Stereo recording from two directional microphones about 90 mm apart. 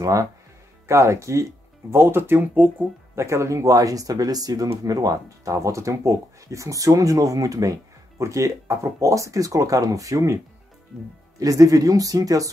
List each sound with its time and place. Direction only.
0.0 s speech: 40° right (ahead or behind); by 2.7 s 20° right (ahead or behind)
3.2 s speech: 35° right (ahead or behind)